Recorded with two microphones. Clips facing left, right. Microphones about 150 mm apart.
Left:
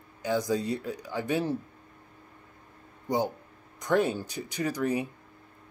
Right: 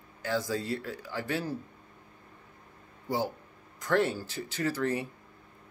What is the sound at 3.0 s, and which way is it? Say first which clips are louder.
Speech: left 3 dB; 20° left (ahead or behind).